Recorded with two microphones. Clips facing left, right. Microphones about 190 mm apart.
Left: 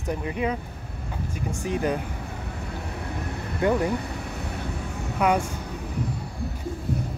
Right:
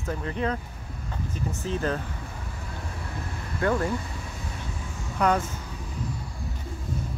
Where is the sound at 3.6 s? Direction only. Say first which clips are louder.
Left 3 dB; 15° left (ahead or behind).